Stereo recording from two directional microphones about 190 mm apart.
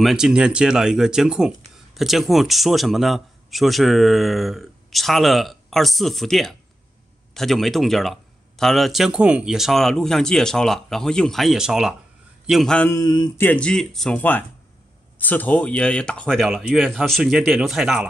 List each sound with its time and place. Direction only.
0.0 s speech: 5° right (ahead or behind)
13.0 s speech: 20° left (ahead or behind)
13.4 s speech: 5° left (ahead or behind)